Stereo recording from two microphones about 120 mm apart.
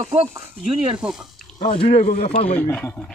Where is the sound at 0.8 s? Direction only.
10° right (ahead or behind).